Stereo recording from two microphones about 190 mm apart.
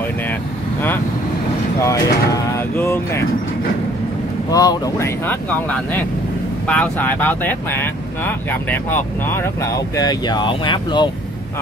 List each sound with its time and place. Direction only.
1.8 s speech: 15° left (ahead or behind)
4.5 s speech: 20° left (ahead or behind)